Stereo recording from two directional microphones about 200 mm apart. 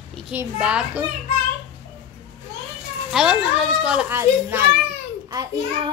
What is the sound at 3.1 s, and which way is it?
A child's voice, centre (ahead or behind).